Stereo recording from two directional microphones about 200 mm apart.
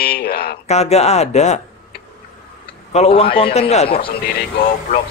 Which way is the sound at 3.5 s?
30° left (ahead or behind).